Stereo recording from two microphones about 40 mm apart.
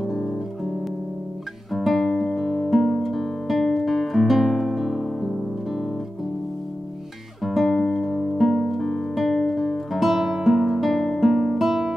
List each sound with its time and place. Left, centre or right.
0.0 s guitar: centre
1.7 s music: centre
7.4 s music: centre